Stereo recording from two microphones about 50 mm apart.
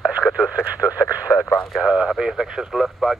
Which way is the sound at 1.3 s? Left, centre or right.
Left.